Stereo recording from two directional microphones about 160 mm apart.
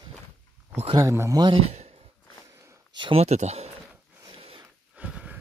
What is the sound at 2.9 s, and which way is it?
Speech, 35° right (ahead or behind).